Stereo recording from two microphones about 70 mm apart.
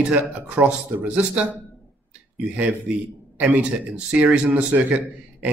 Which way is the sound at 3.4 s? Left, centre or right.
Centre.